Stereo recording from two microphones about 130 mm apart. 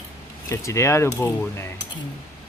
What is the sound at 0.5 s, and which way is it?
Speech, 20° left (ahead or behind).